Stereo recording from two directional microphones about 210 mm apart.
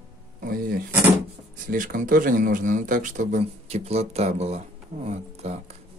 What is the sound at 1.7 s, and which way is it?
Speech, 40° right (ahead or behind).